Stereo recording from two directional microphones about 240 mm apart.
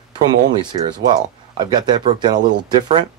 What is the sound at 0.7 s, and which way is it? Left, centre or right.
Speech, right.